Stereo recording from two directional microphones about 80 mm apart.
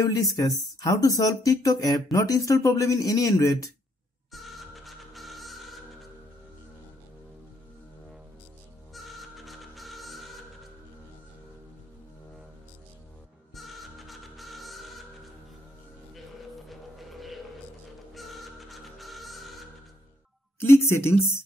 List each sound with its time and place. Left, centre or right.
0.0 s speech: left
4.3 s music: centre
8.9 s music: centre
13.6 s music: centre
16.6 s music: centre
20.6 s speech: left